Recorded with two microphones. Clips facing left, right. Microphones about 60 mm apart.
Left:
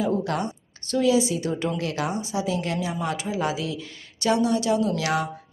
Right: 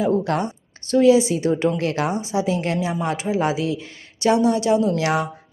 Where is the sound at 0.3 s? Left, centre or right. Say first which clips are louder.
Right 4 dB; right.